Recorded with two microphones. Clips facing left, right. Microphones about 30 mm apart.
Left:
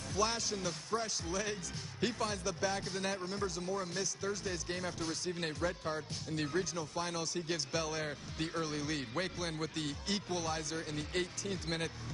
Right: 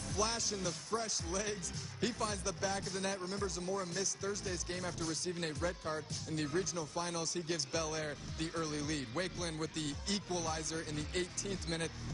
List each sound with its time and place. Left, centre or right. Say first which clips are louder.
0.1 s a man's voice: left 2 dB; centre